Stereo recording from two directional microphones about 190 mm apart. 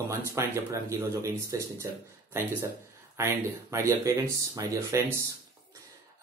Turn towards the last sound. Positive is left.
turn(degrees=-15)  # may be behind; listen again after turning